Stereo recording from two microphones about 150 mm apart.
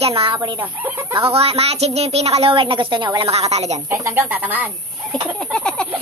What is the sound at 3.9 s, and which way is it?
Speech, 15° right (ahead or behind).